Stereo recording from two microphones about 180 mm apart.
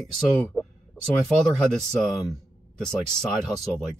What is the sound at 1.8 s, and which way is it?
A man's voice, 5° left (ahead or behind).